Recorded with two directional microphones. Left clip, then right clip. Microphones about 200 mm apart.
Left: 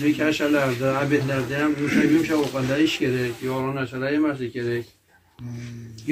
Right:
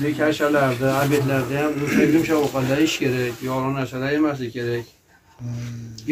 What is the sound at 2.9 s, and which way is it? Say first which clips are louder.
Speech: right 1 dB; 20° left (ahead or behind).